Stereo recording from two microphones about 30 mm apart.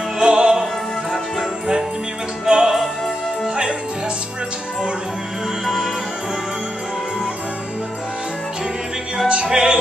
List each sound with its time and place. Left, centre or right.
0.2 s music: right
2.4 s music: right
9.3 s music: right